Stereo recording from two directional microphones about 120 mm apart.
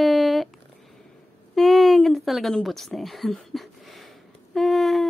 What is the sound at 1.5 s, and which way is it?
Speech, centre (ahead or behind).